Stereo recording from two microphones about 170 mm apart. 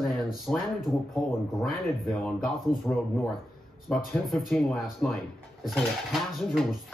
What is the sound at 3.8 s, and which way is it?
Speech, centre (ahead or behind).